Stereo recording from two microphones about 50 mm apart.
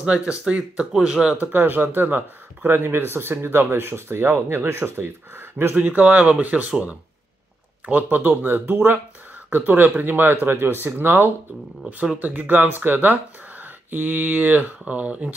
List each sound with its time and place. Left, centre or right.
0.0 s speech: right
1.3 s speech: right
5.8 s speech: right
7.8 s speech: right
12.2 s speech: right